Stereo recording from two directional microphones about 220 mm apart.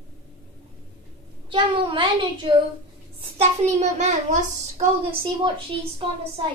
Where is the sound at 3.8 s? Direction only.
35° right (ahead or behind).